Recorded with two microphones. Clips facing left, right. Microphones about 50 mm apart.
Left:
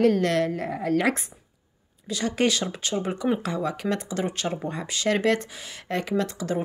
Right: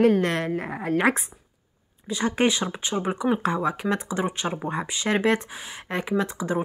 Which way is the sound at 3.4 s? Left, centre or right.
Right.